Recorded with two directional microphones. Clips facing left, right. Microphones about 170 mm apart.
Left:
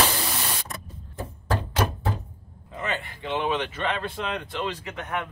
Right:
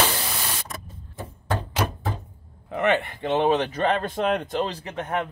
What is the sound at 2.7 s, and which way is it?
Speech, 65° right (ahead or behind).